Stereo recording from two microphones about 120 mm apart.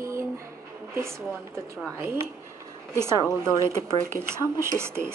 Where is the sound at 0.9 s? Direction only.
20° right (ahead or behind).